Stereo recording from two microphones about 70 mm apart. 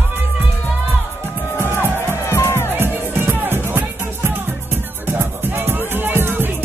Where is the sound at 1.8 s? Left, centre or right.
Left.